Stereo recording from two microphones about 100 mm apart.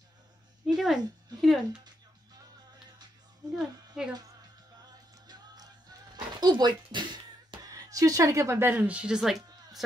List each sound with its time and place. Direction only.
0.7 s speech: 5° right (ahead or behind)
3.5 s speech: 10° right (ahead or behind)
5.2 s music: 40° right (ahead or behind)
6.4 s speech: 50° right (ahead or behind)
7.6 s speech: 35° right (ahead or behind); by 9.4 s 5° right (ahead or behind)